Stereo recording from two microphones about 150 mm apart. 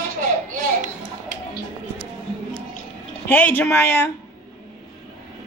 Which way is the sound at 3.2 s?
10° left (ahead or behind).